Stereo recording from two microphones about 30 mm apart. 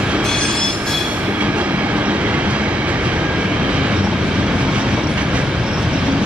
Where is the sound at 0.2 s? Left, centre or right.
Centre.